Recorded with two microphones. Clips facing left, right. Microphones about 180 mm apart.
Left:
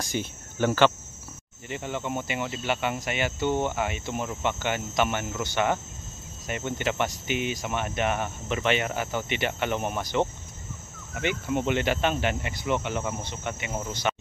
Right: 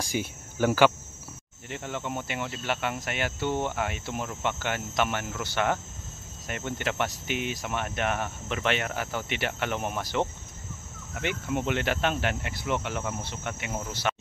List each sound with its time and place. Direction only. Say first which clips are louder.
0.0 s speech: even; 10° right (ahead or behind)